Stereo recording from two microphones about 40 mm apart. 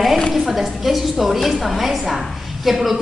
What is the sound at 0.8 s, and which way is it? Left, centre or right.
Speech, centre.